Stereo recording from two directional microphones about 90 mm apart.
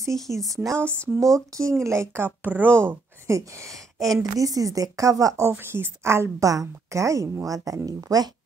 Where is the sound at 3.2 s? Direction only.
35° right (ahead or behind).